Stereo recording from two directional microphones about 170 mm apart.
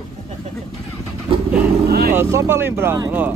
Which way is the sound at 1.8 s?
65° right (ahead or behind).